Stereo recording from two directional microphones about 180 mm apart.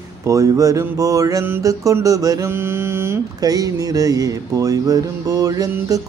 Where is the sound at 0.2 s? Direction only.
20° right (ahead or behind).